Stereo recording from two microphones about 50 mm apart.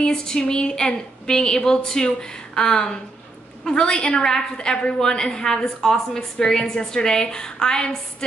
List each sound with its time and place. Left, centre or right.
0.0 s a woman's voice: centre